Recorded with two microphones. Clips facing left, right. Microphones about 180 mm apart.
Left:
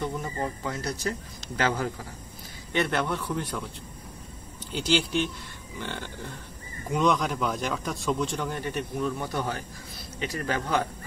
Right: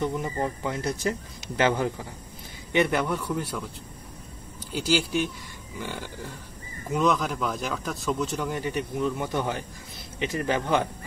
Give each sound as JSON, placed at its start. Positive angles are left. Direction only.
{"t": 0.0, "sound": "a man's voice", "side_deg": -20}
{"t": 4.7, "sound": "a man's voice", "side_deg": -5}